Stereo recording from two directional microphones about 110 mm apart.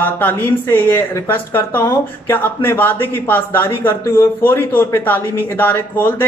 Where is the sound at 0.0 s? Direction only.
15° left (ahead or behind).